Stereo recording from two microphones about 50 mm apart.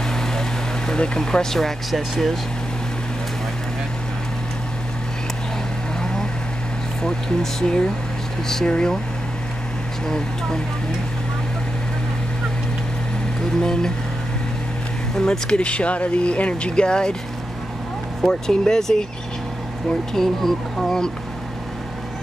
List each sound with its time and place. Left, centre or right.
0.0 s vehicle: centre
5.9 s vehicle: centre
7.6 s speech: centre
10.0 s speech: centre
13.6 s speech: centre
15.1 s speech: centre
18.2 s speech: centre
20.2 s speech: centre